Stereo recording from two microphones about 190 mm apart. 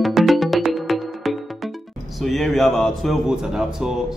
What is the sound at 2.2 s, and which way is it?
Speech, centre (ahead or behind).